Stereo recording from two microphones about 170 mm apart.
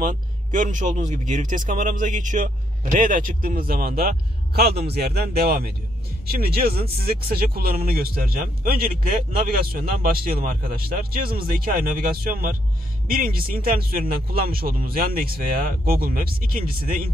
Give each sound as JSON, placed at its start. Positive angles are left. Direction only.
{"t": 0.0, "sound": "speech", "side_deg": -50}